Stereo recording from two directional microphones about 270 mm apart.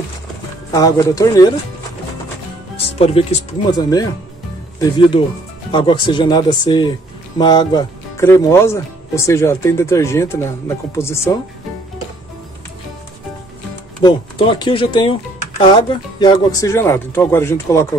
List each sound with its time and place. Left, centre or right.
0.7 s speech: centre
3.0 s speech: left
14.0 s speech: centre